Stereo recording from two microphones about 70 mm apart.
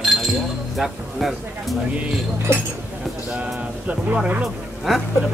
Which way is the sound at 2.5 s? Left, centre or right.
Right.